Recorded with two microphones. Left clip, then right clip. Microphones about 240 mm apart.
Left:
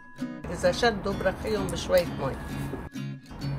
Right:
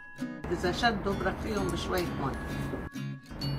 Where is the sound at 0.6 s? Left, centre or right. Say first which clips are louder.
Left 5 dB; left.